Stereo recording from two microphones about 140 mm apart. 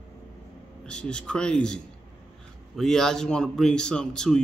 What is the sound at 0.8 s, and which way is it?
A man's voice, 5° left (ahead or behind).